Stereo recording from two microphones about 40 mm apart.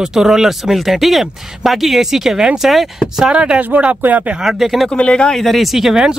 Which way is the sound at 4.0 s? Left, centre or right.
Right.